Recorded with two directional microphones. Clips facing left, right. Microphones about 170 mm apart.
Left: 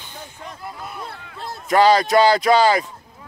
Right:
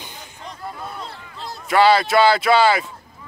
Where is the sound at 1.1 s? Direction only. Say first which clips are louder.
Left 1 dB; 55° left (ahead or behind).